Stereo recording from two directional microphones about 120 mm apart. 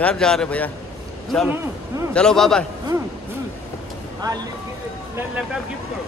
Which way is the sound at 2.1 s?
5° left (ahead or behind).